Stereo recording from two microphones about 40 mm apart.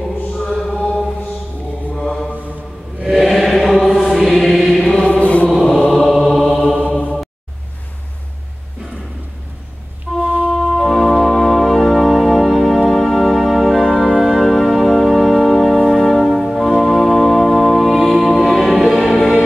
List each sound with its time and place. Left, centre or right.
0.4 s mantra: centre
3.1 s chant: centre
3.7 s music: centre
5.2 s chant: left
5.6 s choir: centre
5.9 s music: centre
10.2 s music: right
10.5 s organ: centre
12.9 s music: centre
14.4 s music: centre